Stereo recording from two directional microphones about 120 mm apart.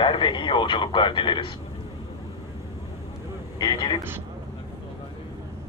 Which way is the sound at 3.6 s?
35° left (ahead or behind).